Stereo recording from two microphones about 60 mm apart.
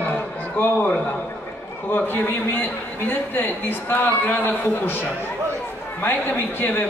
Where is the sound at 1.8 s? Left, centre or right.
Left.